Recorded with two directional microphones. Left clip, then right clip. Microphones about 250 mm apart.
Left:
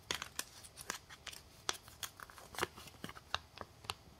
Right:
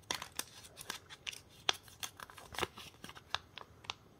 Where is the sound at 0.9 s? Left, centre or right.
Centre.